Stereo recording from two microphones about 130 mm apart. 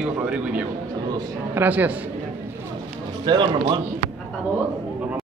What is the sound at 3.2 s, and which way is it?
Speech, 35° right (ahead or behind).